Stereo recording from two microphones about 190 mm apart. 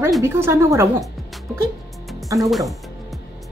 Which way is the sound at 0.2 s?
15° right (ahead or behind).